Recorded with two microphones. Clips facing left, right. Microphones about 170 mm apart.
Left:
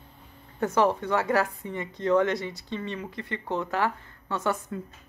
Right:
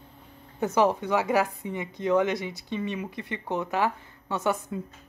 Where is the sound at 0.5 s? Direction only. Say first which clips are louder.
Even; 15° right (ahead or behind).